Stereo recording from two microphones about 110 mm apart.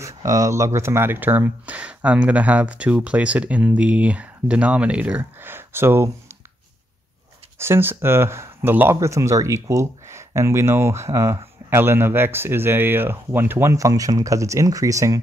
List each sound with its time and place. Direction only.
0.0 s speech: 30° right (ahead or behind)
7.5 s speech: 20° right (ahead or behind)